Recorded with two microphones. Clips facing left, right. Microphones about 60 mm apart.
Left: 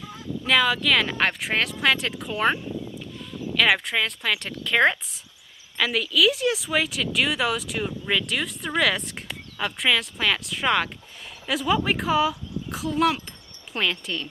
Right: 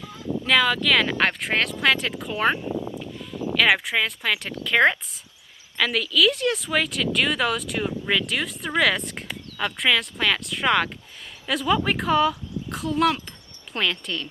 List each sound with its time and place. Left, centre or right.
0.5 s speech: centre
2.7 s a sound: right
3.5 s speech: centre